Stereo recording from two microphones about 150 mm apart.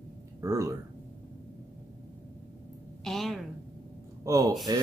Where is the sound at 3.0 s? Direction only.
Centre (ahead or behind).